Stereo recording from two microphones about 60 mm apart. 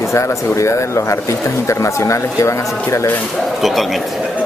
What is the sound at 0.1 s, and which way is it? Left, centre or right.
Speech, left.